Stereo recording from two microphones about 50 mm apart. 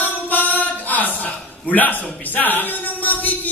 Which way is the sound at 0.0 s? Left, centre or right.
Left.